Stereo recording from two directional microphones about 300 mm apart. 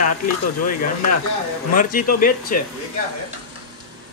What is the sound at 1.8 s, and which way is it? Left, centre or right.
Speech, left.